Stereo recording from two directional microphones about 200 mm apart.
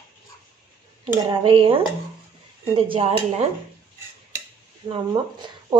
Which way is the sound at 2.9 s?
30° right (ahead or behind).